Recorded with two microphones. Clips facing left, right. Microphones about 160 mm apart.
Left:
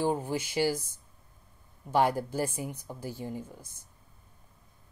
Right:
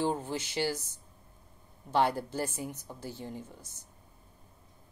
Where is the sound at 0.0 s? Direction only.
10° left (ahead or behind).